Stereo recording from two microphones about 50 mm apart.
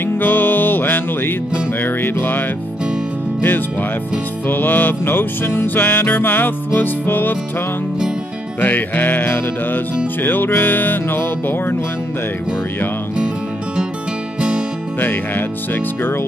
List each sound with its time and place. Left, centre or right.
0.0 s music: left
4.5 s music: left
5.9 s music: left
8.5 s music: left
15.0 s music: left